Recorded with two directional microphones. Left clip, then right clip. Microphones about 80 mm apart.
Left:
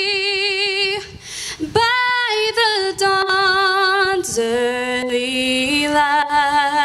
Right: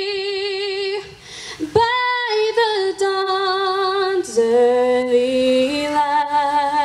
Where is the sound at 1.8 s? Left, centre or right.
Left.